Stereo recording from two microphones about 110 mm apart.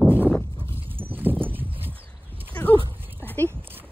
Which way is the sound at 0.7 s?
55° right (ahead or behind).